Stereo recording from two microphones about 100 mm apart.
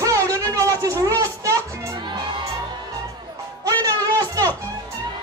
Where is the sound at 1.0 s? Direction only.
35° right (ahead or behind).